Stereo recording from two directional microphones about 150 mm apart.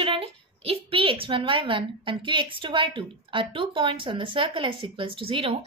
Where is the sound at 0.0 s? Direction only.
40° right (ahead or behind).